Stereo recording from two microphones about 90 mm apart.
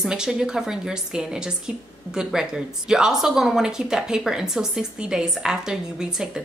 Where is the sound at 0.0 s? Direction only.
5° right (ahead or behind).